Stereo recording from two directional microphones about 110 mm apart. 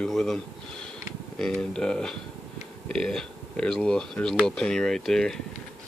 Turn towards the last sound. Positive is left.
turn(degrees=5)  # may be behind; listen again after turning